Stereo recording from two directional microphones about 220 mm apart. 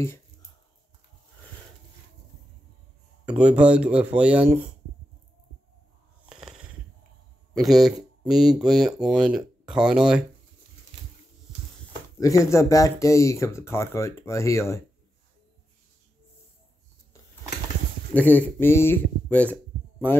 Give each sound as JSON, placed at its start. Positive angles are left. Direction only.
{"t": 3.3, "sound": "speech", "side_deg": -5}
{"t": 7.5, "sound": "speech", "side_deg": 0}
{"t": 12.2, "sound": "speech", "side_deg": 15}
{"t": 18.1, "sound": "speech", "side_deg": 5}